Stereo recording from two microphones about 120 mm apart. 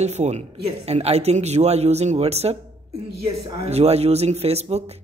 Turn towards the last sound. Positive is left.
turn(degrees=-60)  # may be behind; listen again after turning